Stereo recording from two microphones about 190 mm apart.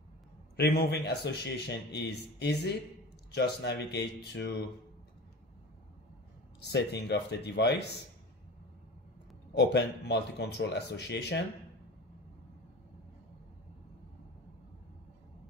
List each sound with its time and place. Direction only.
0.6 s speech: 55° left (ahead or behind)
6.6 s speech: 60° left (ahead or behind)
9.6 s speech: 60° left (ahead or behind)